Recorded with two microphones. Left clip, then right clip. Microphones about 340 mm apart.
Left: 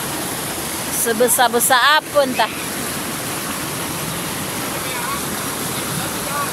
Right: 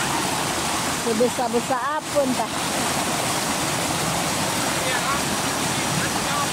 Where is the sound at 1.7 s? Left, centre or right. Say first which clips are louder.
Left 10 dB; left.